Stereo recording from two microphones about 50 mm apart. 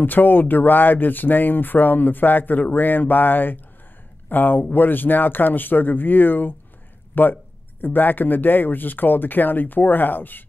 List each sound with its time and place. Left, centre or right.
0.0 s speech: left